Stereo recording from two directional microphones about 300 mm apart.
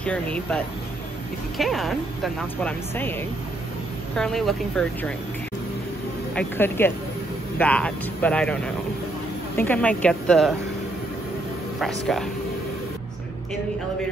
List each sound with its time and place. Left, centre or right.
0.0 s speech: centre
1.6 s speech: centre
6.3 s speech: centre